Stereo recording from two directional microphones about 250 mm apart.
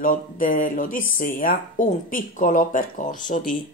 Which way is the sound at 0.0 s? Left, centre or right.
Left.